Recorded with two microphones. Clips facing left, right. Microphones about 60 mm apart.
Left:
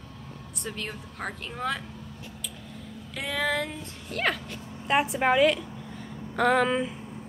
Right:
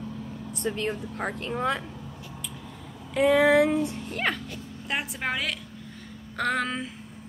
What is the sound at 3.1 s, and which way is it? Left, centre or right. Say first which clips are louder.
A woman's voice: right 10 dB; centre.